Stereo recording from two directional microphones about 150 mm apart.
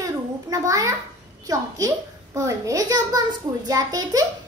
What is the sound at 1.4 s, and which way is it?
A child's voice, 20° right (ahead or behind).